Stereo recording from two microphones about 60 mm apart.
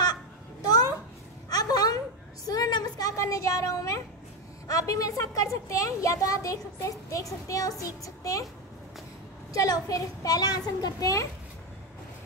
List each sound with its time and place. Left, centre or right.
0.7 s a sound: left
4.6 s a child's voice: left
9.5 s a child's voice: left